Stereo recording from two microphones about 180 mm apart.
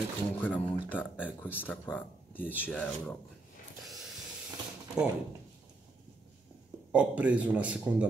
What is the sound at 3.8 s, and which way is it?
Hiss, centre (ahead or behind).